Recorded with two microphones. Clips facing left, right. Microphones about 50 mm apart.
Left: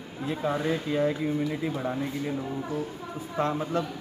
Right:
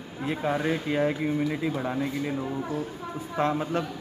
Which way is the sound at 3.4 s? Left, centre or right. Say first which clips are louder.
Right 1 dB; right.